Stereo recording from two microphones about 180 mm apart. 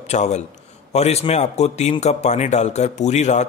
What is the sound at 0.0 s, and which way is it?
A man's voice, 40° left (ahead or behind).